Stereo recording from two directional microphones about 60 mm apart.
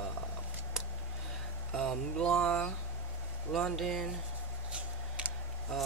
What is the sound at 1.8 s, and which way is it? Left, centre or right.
Speech, centre.